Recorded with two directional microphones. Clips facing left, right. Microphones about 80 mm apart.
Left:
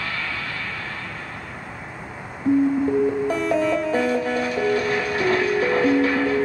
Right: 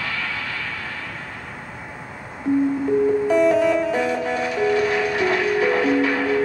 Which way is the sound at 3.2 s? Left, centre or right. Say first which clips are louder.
Right 5 dB; left.